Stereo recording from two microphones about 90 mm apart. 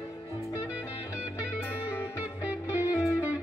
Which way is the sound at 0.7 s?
15° right (ahead or behind).